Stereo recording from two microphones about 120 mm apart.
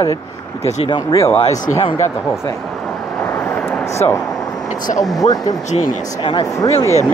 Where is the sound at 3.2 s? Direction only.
15° left (ahead or behind).